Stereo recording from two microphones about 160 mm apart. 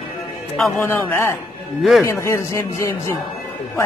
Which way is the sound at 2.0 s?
15° left (ahead or behind).